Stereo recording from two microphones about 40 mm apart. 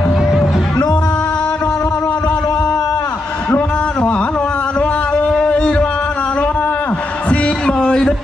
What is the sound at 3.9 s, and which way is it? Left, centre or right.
Carnatic music, left.